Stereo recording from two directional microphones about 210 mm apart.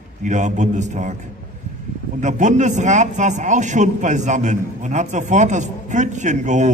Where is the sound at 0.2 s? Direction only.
35° right (ahead or behind).